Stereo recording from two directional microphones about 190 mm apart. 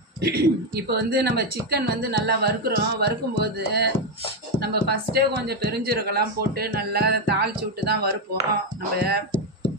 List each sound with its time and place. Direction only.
0.2 s speech: 60° right (ahead or behind)